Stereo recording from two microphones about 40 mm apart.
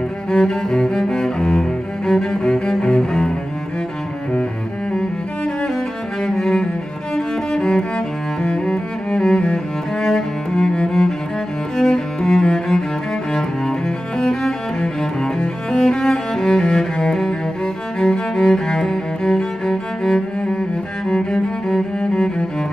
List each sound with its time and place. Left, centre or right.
0.3 s cello: centre
6.2 s cello: centre
7.2 s music: centre
8.4 s cello: centre
17.9 s music: left
18.4 s cello: centre